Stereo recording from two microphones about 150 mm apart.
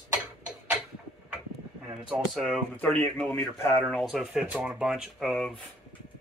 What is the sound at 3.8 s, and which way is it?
Speech, centre (ahead or behind).